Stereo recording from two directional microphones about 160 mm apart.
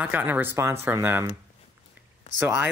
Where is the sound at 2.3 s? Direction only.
45° left (ahead or behind).